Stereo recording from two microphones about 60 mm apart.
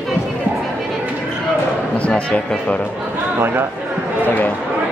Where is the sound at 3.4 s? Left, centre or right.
Right.